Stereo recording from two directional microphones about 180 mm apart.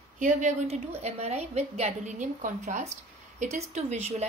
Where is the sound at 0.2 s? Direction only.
45° right (ahead or behind).